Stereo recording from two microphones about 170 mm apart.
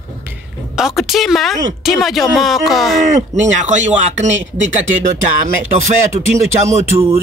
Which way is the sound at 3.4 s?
45° right (ahead or behind).